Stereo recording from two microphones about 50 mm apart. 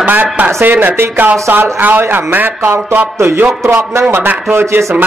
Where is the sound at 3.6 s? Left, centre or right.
Right.